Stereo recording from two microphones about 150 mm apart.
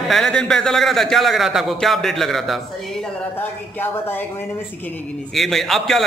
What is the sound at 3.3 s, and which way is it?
Speech, 15° left (ahead or behind).